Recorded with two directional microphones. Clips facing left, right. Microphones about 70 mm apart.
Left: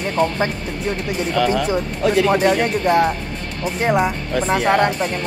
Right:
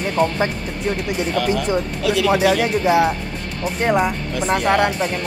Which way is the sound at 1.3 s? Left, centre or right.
Left.